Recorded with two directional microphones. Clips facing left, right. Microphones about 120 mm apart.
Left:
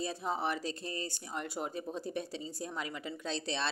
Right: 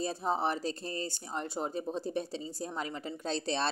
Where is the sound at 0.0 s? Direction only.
35° right (ahead or behind).